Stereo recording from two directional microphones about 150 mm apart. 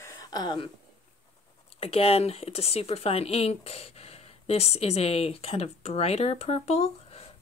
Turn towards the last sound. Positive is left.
turn(degrees=45)  # may be behind; listen again after turning